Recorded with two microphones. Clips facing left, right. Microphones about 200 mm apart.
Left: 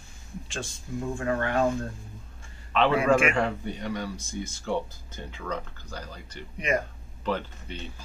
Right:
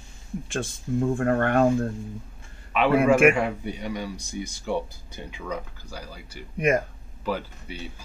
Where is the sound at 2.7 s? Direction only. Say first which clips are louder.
Right 1 dB; 10° right (ahead or behind).